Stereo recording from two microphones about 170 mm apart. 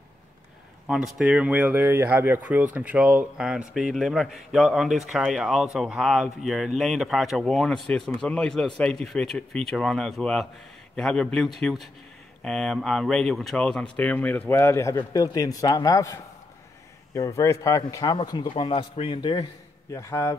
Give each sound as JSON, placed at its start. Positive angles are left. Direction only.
{"t": 0.8, "sound": "a man's voice", "side_deg": 0}
{"t": 19.9, "sound": "a man's voice", "side_deg": 15}